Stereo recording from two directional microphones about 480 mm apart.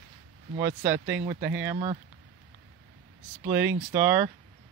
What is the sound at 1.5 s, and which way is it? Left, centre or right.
Speech, centre.